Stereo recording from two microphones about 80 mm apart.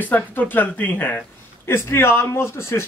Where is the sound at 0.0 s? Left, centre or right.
Left.